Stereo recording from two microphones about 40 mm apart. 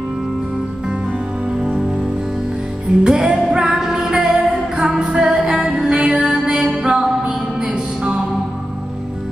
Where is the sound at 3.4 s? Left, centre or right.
Centre.